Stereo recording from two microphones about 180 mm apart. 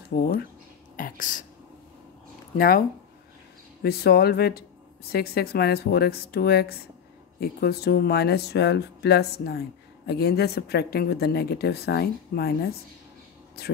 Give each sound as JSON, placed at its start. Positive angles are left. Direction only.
{"t": 0.1, "sound": "speech", "side_deg": 65}
{"t": 0.9, "sound": "whispering", "side_deg": 50}
{"t": 2.5, "sound": "speech", "side_deg": 55}
{"t": 3.8, "sound": "speech", "side_deg": 60}